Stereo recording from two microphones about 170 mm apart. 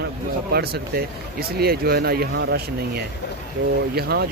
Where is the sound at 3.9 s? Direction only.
70° right (ahead or behind).